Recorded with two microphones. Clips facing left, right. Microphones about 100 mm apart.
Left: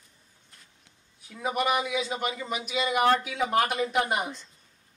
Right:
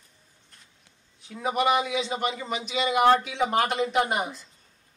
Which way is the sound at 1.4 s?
Centre (ahead or behind).